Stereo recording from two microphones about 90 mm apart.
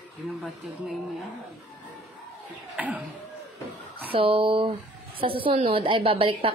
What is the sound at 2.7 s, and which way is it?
Speech, 15° right (ahead or behind).